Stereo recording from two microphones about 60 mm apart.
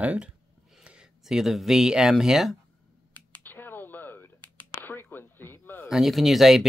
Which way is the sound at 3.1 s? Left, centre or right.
Left.